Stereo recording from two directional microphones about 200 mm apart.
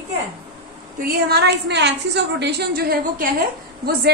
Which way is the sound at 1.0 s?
55° right (ahead or behind).